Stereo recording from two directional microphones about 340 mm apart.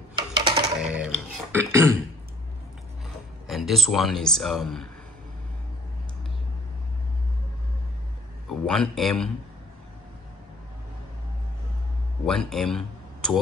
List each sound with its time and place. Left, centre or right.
0.1 s typing: centre
0.8 s a sound: centre
3.4 s speech: centre
8.5 s a man's voice: centre
12.3 s speech: centre